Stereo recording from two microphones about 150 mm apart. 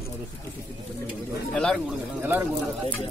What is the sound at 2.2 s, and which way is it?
Speech, 15° right (ahead or behind).